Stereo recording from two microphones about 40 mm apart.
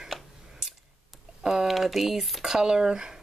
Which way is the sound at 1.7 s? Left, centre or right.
Centre.